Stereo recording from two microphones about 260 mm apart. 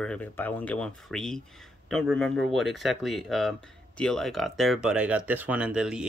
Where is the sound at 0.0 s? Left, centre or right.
Centre.